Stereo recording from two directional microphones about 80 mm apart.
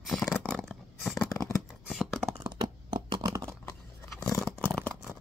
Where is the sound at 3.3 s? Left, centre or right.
Right.